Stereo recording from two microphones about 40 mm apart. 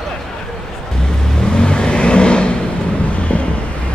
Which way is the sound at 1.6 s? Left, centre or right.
Left.